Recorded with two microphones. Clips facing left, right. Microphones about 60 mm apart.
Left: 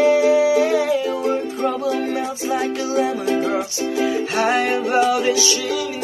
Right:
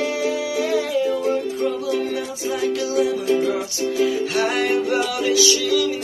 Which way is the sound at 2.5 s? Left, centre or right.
Left.